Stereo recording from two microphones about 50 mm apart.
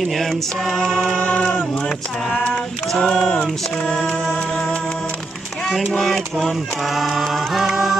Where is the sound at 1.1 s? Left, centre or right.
Centre.